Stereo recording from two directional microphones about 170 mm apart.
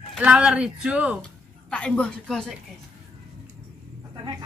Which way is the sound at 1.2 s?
5° left (ahead or behind).